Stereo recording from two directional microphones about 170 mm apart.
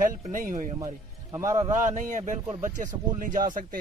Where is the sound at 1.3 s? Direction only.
20° right (ahead or behind).